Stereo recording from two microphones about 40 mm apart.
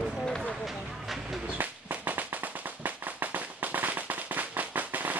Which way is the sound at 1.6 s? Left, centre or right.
Right.